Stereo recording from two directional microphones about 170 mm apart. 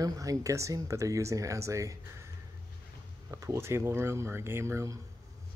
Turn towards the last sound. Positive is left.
turn(degrees=-20)  # may be behind; listen again after turning